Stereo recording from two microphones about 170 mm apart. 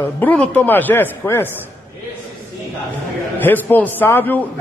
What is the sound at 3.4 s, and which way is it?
A man's voice, 10° left (ahead or behind).